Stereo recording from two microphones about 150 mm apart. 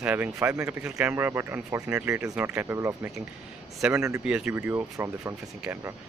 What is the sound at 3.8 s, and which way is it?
Speech, 5° right (ahead or behind).